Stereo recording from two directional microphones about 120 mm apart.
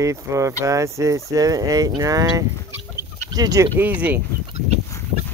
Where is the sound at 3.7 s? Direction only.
15° right (ahead or behind).